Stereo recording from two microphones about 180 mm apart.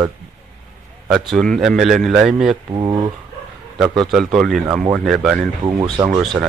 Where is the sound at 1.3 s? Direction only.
Centre (ahead or behind).